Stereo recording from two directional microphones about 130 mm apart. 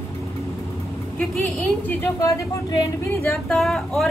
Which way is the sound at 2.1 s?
25° left (ahead or behind).